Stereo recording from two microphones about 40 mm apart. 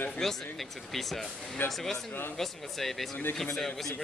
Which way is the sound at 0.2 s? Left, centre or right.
Centre.